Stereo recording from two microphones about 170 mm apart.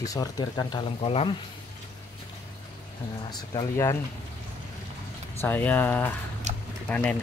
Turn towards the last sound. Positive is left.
turn(degrees=10)  # may be behind; listen again after turning